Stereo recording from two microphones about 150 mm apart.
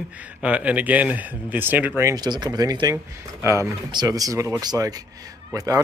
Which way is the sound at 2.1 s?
30° right (ahead or behind).